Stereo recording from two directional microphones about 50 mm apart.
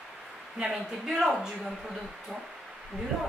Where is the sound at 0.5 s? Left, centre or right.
Centre.